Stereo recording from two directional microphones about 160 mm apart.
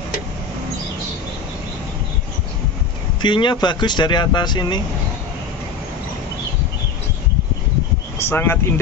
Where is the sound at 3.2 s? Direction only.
30° left (ahead or behind).